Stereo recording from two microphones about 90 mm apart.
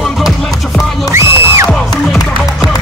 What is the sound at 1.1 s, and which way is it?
Music, 30° right (ahead or behind).